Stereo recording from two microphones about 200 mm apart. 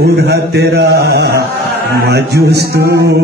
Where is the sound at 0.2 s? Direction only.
55° right (ahead or behind).